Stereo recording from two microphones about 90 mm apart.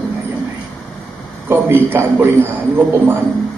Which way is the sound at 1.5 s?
25° right (ahead or behind).